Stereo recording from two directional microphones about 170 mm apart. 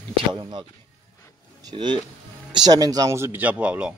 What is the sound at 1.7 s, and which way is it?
Speech, 25° right (ahead or behind).